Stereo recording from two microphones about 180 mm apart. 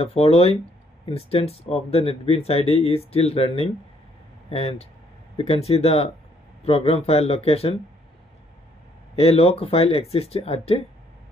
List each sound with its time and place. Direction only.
0.0 s speech: 35° left (ahead or behind)
9.2 s speech: 35° left (ahead or behind)